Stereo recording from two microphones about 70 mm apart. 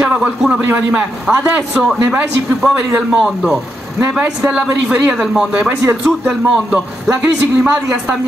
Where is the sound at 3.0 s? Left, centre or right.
Centre.